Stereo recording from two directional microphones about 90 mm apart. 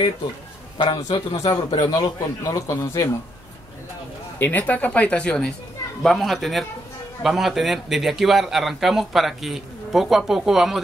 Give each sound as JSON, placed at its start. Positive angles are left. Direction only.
{"t": 0.7, "sound": "a man's voice", "side_deg": 65}
{"t": 1.9, "sound": "a man's voice", "side_deg": 45}
{"t": 4.4, "sound": "speech", "side_deg": 20}